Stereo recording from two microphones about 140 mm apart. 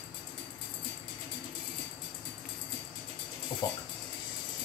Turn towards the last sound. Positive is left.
turn(degrees=30)  # may be behind; listen again after turning